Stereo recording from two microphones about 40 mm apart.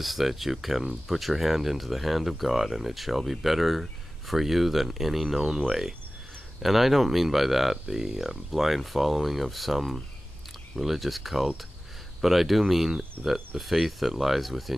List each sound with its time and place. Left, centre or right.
0.0 s speech: centre
6.6 s speech: centre
13.2 s speech: right
13.6 s speech: centre